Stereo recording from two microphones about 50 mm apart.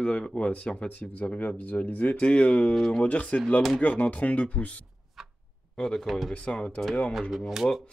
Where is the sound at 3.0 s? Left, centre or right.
Left.